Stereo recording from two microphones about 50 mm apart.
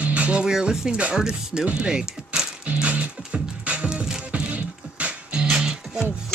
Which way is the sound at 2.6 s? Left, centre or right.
Right.